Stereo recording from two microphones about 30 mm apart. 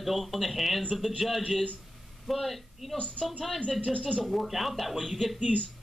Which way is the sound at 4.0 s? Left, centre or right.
Left.